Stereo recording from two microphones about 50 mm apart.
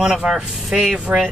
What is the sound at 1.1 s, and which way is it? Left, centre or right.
Speech, right.